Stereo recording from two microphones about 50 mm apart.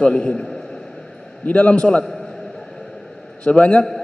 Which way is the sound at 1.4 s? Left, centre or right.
Left.